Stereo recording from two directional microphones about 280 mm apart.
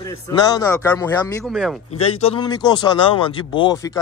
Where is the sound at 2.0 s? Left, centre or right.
Left.